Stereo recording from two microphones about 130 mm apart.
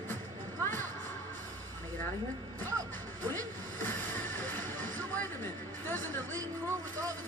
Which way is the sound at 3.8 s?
15° left (ahead or behind).